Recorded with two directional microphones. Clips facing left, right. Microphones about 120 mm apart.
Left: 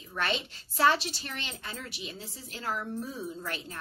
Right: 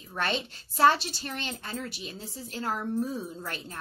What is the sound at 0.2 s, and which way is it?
A woman's voice, 35° right (ahead or behind).